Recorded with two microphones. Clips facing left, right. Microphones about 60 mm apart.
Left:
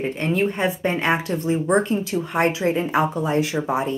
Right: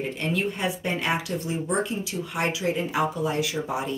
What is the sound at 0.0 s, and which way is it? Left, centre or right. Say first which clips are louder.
A woman's voice: left 5 dB; left.